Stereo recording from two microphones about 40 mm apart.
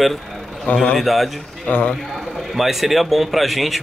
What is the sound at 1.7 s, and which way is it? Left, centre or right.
Speech, left.